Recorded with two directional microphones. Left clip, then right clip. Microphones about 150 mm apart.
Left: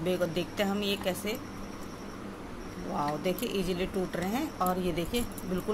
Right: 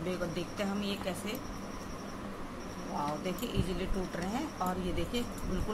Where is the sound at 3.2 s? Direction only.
45° left (ahead or behind).